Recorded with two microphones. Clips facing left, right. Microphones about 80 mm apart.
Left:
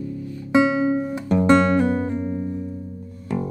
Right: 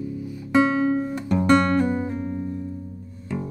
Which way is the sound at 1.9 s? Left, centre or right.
Centre.